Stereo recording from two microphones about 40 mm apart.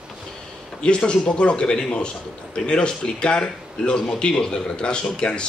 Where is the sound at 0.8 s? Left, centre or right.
Left.